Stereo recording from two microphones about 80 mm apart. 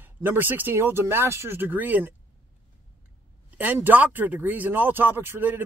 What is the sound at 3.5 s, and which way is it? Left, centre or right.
Speech, right.